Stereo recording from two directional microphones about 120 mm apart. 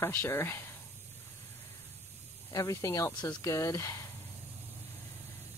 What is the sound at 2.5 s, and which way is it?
Speech, 25° left (ahead or behind).